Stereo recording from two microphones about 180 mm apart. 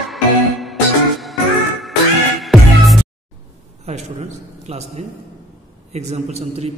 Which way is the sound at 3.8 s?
35° right (ahead or behind).